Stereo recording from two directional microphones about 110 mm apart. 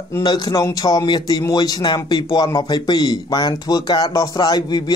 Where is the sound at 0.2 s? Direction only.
40° left (ahead or behind).